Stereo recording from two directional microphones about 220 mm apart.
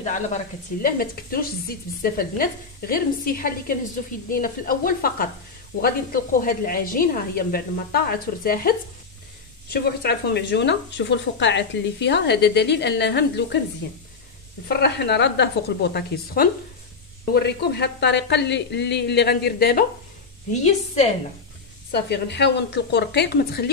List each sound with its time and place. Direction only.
0.0 s speech: 35° left (ahead or behind)
20.5 s a woman's voice: 30° left (ahead or behind)
21.9 s speech: 50° left (ahead or behind)